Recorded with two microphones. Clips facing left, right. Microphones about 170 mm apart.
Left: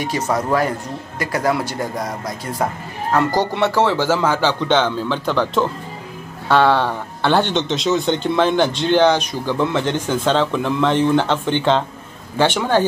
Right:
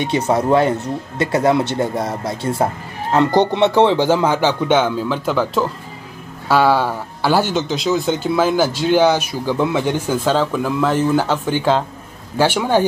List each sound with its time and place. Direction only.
0.0 s speech: 25° right (ahead or behind)